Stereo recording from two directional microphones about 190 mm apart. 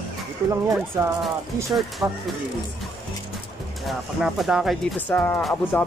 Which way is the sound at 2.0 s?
10° right (ahead or behind).